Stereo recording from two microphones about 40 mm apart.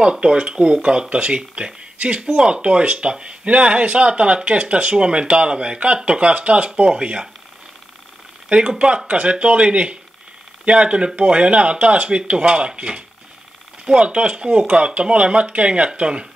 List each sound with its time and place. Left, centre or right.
0.0 s speech: right
8.5 s speech: right